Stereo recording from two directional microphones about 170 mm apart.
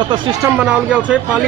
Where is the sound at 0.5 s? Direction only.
5° right (ahead or behind).